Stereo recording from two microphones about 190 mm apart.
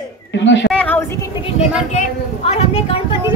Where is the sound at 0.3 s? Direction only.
70° left (ahead or behind).